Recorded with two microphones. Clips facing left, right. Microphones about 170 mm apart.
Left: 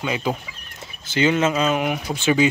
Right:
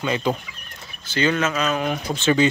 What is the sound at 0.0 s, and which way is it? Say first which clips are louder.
Speech: right 1 dB; 10° left (ahead or behind).